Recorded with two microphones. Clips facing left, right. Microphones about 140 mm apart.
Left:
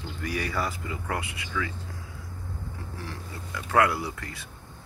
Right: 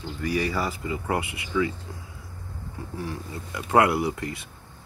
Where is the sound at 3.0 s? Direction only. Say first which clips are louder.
Right 5 dB; 20° right (ahead or behind).